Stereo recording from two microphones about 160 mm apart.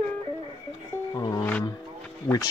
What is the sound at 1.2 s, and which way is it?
Music, 25° left (ahead or behind).